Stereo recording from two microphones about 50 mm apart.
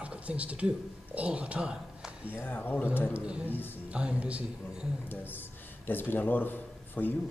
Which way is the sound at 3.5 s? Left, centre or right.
Left.